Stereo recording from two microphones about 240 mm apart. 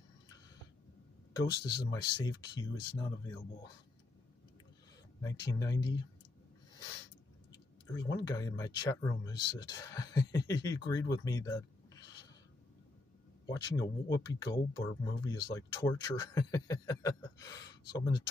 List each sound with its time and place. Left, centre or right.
1.3 s speech: centre
5.2 s speech: centre
7.5 s speech: centre
13.5 s speech: centre